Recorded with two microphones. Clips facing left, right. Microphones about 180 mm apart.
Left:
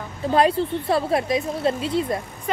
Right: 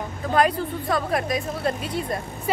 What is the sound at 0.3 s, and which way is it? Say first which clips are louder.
Speech: left 3 dB; 30° left (ahead or behind).